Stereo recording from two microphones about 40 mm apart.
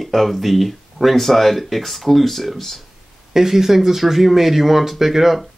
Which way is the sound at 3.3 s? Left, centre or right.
Centre.